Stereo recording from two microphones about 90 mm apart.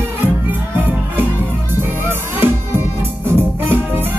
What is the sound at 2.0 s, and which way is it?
Music, 25° right (ahead or behind).